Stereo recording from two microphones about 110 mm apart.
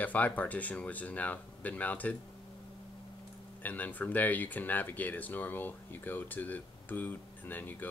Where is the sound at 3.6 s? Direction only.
15° left (ahead or behind).